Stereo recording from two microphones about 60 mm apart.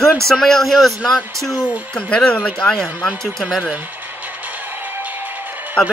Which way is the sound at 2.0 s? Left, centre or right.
Centre.